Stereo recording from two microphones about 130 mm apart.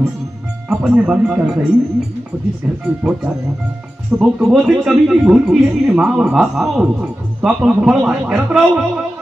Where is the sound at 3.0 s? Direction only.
10° right (ahead or behind).